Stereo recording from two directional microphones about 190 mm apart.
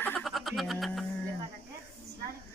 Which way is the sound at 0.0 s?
5° left (ahead or behind).